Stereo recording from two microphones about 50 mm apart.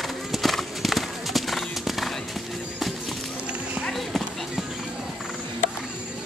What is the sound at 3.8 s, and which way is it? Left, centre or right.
Clip-clop, centre.